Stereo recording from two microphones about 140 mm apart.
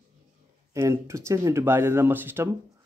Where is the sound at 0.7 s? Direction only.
20° right (ahead or behind).